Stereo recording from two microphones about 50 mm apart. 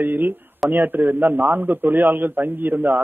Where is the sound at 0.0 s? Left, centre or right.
Right.